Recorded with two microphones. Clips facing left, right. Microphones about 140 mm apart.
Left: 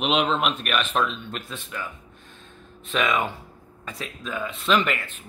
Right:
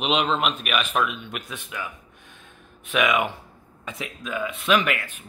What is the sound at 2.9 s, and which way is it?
Speech, 10° right (ahead or behind).